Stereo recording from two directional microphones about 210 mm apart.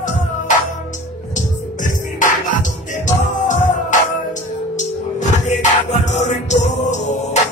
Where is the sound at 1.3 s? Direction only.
35° left (ahead or behind).